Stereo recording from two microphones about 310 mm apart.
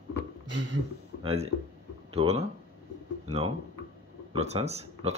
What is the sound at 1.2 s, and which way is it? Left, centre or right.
Speech, centre.